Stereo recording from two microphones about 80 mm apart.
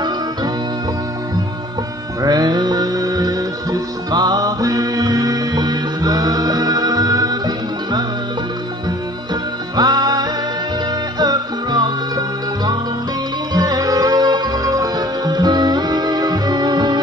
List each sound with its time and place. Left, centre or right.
2.2 s music: right
9.3 s music: right